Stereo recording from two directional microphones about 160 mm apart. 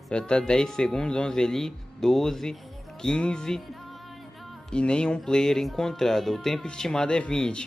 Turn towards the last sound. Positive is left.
turn(degrees=5)  # may be behind; listen again after turning